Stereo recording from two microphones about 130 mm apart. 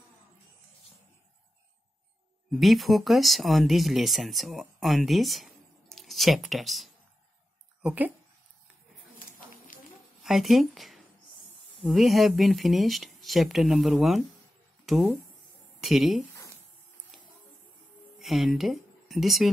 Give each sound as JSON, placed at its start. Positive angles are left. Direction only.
{"t": 2.5, "sound": "speech", "side_deg": 0}
{"t": 7.8, "sound": "speech", "side_deg": -10}
{"t": 9.7, "sound": "a sound", "side_deg": 90}
{"t": 10.2, "sound": "speech", "side_deg": 0}
{"t": 18.2, "sound": "speech", "side_deg": 0}